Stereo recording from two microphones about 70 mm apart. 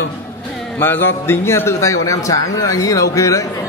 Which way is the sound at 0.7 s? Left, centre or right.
Left.